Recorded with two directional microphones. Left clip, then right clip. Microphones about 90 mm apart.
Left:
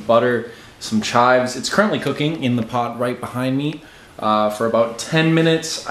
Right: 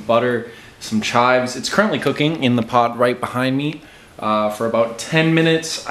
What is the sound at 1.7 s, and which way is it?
Speech, 15° right (ahead or behind).